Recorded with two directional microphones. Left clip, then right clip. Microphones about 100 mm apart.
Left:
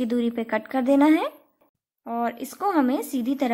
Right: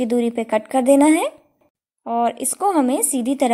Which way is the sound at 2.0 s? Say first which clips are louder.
Right 8 dB; 35° right (ahead or behind).